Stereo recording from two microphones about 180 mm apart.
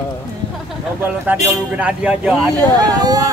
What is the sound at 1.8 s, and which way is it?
Speech, 5° right (ahead or behind).